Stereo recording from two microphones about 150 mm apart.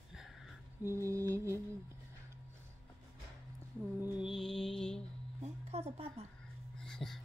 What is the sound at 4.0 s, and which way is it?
Music, 10° right (ahead or behind).